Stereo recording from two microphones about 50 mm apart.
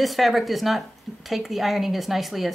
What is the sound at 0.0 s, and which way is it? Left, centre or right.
A woman's voice, centre.